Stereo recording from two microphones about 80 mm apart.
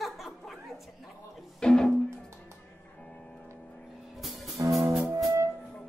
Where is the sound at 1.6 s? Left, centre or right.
Centre.